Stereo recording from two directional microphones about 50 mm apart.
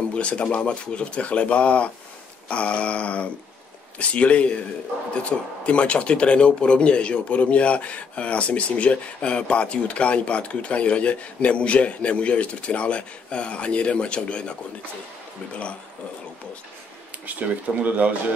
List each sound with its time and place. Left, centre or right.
0.1 s speech: left
17.3 s speech: right